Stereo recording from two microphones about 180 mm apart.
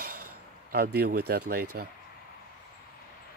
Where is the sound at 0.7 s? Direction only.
55° right (ahead or behind).